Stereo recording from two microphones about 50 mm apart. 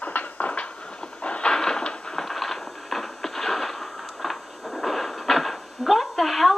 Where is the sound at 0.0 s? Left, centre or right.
Left.